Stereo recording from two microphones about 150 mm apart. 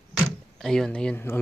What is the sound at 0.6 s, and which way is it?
Speech, 5° left (ahead or behind).